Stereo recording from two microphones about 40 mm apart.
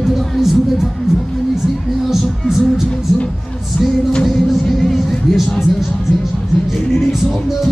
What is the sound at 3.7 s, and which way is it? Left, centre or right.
Music, left.